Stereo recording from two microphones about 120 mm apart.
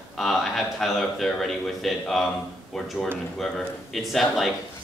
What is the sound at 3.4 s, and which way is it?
A man's voice, centre (ahead or behind).